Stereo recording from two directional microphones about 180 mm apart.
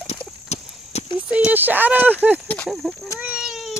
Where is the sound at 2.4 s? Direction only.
10° left (ahead or behind).